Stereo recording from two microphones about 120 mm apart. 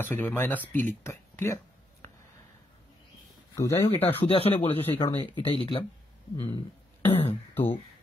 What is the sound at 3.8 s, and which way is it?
Speech, 55° left (ahead or behind).